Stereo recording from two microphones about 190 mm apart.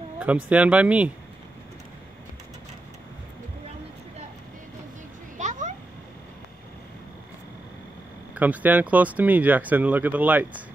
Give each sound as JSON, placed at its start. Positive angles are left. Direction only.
{"t": 0.5, "sound": "speech", "side_deg": -5}
{"t": 5.4, "sound": "children playing", "side_deg": -40}
{"t": 8.4, "sound": "speech", "side_deg": -10}